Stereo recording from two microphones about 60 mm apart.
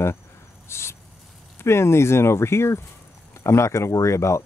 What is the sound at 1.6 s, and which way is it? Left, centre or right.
Speech, left.